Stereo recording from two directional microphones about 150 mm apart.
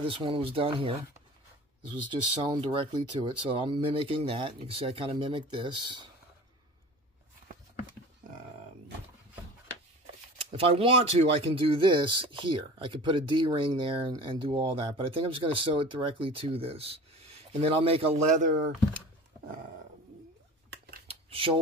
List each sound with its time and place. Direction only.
0.0 s speech: 35° right (ahead or behind)
10.3 s speech: 40° right (ahead or behind)
18.4 s speech: 60° right (ahead or behind)
21.1 s a sound: 40° right (ahead or behind)